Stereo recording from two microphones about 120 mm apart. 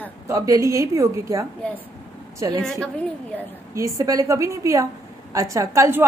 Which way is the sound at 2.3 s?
25° right (ahead or behind).